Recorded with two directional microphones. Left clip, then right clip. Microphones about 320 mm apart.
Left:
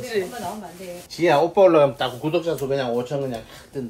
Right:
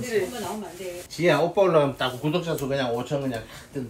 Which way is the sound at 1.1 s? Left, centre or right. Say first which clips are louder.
Left 4 dB; left.